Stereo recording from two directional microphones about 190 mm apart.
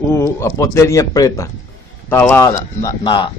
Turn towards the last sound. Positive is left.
turn(degrees=25)  # may be behind; listen again after turning